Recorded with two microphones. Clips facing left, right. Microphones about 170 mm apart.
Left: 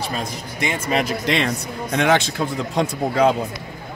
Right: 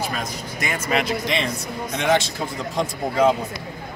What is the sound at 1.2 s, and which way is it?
A man's voice, 65° left (ahead or behind).